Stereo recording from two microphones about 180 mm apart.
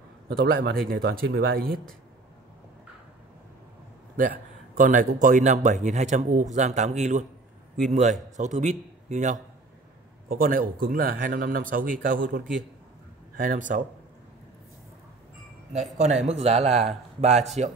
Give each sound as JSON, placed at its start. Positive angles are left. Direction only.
{"t": 0.3, "sound": "speech", "side_deg": -55}
{"t": 4.2, "sound": "speech", "side_deg": -50}
{"t": 10.2, "sound": "speech", "side_deg": -55}
{"t": 15.7, "sound": "speech", "side_deg": -40}